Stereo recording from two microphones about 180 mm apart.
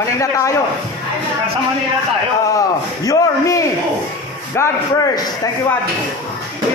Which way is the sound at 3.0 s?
20° left (ahead or behind).